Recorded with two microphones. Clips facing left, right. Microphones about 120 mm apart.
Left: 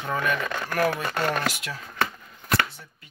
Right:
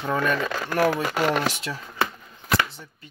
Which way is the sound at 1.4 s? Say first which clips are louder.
Right 2 dB; 30° right (ahead or behind).